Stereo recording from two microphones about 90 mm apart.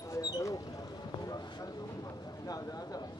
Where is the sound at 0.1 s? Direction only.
35° left (ahead or behind).